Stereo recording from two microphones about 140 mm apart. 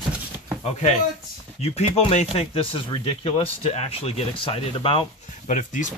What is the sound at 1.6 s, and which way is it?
Speech, 50° left (ahead or behind).